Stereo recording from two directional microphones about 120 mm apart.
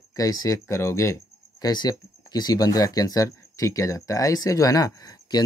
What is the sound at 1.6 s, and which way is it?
Speech, 35° left (ahead or behind).